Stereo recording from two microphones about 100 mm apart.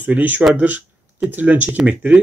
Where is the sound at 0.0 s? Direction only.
15° right (ahead or behind).